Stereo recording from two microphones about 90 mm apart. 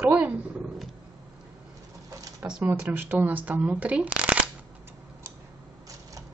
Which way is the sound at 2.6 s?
25° right (ahead or behind).